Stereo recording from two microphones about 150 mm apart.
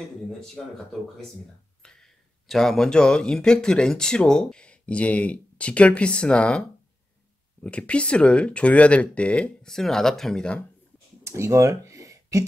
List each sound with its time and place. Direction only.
0.6 s speech: 5° left (ahead or behind)
1.8 s speech: 5° left (ahead or behind)
7.6 s speech: 10° left (ahead or behind)
11.2 s a sound: 20° right (ahead or behind)